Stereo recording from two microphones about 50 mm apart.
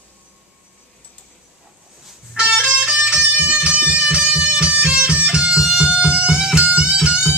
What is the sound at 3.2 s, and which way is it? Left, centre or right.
Music, right.